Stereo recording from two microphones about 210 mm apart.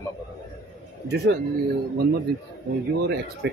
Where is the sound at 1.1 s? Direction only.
50° right (ahead or behind).